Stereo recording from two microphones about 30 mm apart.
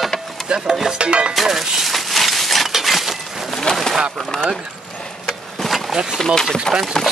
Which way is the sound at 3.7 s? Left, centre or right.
Left.